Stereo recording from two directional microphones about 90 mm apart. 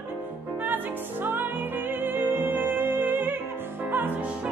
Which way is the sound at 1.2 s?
20° right (ahead or behind).